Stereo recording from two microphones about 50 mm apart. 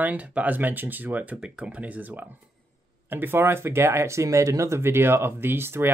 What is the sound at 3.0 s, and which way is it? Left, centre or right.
Speech, right.